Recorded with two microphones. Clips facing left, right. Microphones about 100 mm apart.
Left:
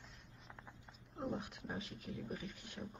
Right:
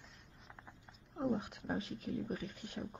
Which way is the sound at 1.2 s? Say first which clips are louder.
Right 6 dB; 50° right (ahead or behind).